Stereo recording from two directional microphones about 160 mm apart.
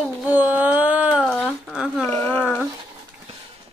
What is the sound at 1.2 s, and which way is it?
Speech, 5° left (ahead or behind).